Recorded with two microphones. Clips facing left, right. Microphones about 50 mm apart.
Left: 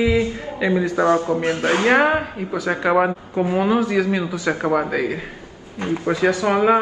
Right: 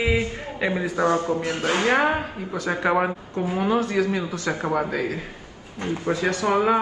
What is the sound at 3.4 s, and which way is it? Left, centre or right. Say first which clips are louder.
Speech: left 4 dB; left.